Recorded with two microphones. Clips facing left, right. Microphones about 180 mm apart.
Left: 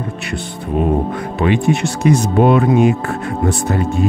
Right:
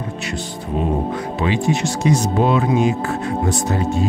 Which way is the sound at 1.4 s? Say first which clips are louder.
Left 5 dB; 60° left (ahead or behind).